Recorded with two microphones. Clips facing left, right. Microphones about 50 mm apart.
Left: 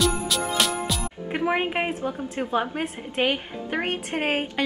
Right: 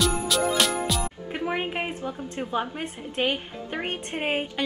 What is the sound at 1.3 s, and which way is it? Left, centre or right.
A woman's voice, centre.